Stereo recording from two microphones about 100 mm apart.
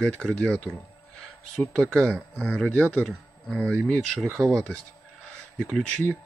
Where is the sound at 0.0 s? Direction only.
15° left (ahead or behind).